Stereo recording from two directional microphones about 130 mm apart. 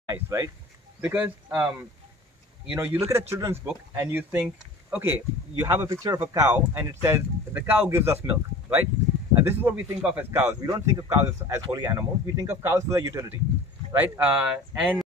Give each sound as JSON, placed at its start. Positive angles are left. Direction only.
{"t": 0.1, "sound": "speech", "side_deg": -25}
{"t": 1.0, "sound": "speech", "side_deg": -10}
{"t": 5.7, "sound": "speech", "side_deg": -25}
{"t": 13.9, "sound": "speech", "side_deg": -15}